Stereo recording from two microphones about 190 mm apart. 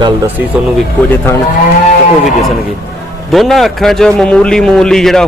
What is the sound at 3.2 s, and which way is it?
Speech, centre (ahead or behind).